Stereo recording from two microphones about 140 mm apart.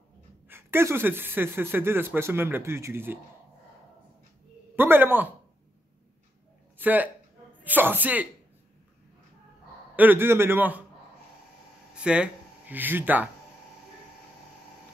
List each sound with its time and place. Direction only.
0.5 s speech: 15° right (ahead or behind)
4.7 s speech: 15° right (ahead or behind)
6.8 s speech: 10° right (ahead or behind)
9.9 s speech: 15° right (ahead or behind)
11.9 s speech: 5° right (ahead or behind)